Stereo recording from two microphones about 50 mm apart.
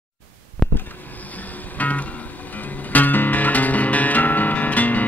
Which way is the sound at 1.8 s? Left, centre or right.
Left.